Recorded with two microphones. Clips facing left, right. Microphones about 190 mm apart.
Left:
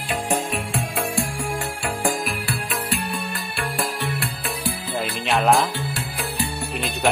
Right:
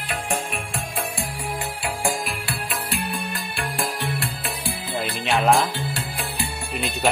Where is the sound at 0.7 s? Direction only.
Centre (ahead or behind).